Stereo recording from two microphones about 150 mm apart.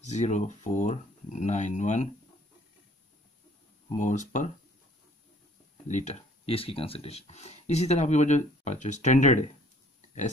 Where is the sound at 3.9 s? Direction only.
55° left (ahead or behind).